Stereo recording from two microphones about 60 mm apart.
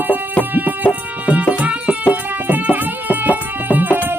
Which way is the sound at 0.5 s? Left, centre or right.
Right.